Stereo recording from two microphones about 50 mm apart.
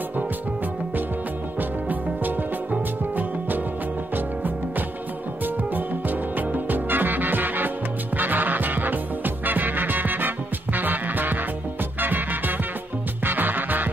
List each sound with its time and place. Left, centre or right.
1.6 s music: right